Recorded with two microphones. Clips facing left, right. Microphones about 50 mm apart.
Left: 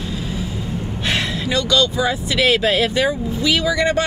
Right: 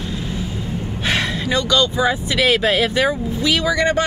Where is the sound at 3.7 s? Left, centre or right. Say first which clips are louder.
Even; right.